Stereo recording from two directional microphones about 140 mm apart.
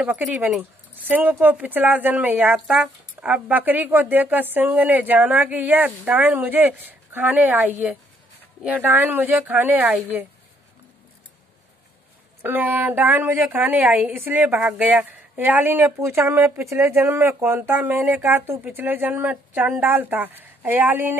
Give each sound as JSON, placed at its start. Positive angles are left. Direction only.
{"t": 0.0, "sound": "a woman's voice", "side_deg": -10}
{"t": 12.4, "sound": "a woman's voice", "side_deg": -15}